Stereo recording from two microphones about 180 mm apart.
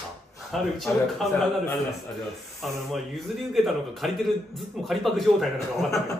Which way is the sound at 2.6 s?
Centre (ahead or behind).